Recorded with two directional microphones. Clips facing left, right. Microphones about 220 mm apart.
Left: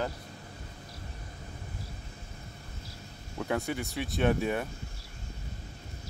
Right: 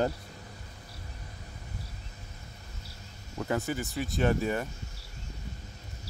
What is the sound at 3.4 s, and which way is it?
Speech, centre (ahead or behind).